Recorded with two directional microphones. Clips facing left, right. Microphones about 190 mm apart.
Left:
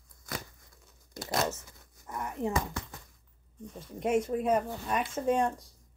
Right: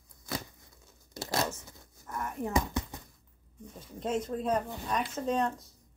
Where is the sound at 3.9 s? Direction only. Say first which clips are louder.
Left 4 dB; 10° left (ahead or behind).